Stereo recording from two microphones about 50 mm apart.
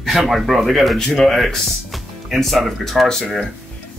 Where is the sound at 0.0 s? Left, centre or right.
Centre.